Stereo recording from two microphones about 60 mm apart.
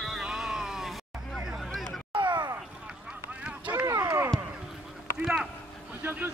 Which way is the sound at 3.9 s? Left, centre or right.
Right.